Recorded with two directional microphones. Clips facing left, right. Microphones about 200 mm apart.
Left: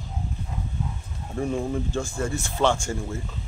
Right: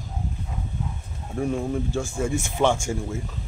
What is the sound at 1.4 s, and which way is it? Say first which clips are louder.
Speech: right 1 dB; 5° right (ahead or behind).